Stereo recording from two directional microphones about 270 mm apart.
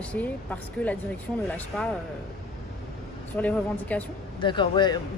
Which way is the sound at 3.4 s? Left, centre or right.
Centre.